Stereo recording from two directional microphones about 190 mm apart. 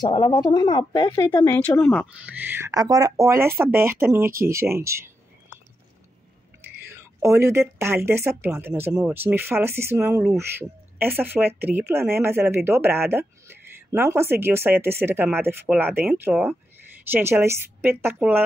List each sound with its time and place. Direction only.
0.0 s a woman's voice: 25° left (ahead or behind)
1.6 s speech: 10° left (ahead or behind)
2.2 s speech: 10° right (ahead or behind)
4.3 s speech: 50° right (ahead or behind)
4.6 s speech: 15° right (ahead or behind)
7.0 s whispering: 15° right (ahead or behind)
7.8 s speech: 15° right (ahead or behind)